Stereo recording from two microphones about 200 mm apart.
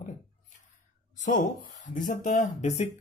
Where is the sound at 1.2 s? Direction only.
40° left (ahead or behind).